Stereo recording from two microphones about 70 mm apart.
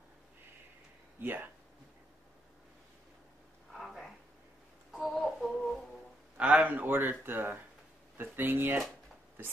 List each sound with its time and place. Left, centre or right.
1.2 s speech: right
3.7 s a sound: centre
4.9 s humming: centre
6.3 s speech: centre